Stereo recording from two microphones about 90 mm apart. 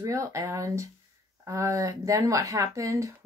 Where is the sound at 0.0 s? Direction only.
35° right (ahead or behind).